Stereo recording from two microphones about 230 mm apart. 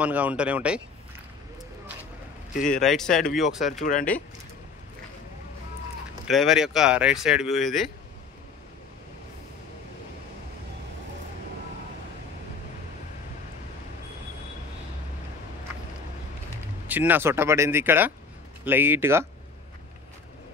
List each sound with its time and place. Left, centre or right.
0.0 s speech: centre
2.5 s speech: left
2.8 s speech: centre
6.2 s speech: centre
16.8 s speech: centre